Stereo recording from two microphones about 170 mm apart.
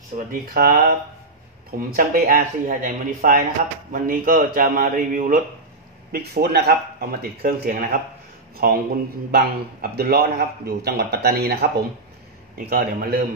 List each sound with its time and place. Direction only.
0.3 s a man's voice: 60° right (ahead or behind)
6.1 s speech: 70° right (ahead or behind)
12.5 s speech: 55° right (ahead or behind)